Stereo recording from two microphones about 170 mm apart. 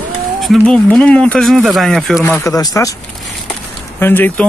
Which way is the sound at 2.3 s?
20° left (ahead or behind).